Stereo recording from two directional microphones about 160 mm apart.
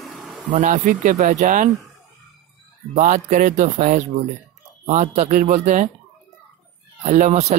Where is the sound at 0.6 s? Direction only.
50° right (ahead or behind).